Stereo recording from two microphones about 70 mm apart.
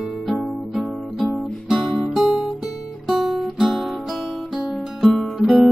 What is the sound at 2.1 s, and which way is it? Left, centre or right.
Music, centre.